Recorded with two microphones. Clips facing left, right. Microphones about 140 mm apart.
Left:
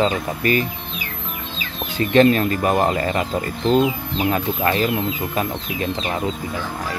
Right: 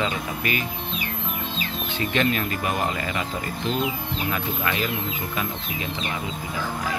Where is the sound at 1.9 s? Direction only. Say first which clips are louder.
Left 10 dB; 40° left (ahead or behind).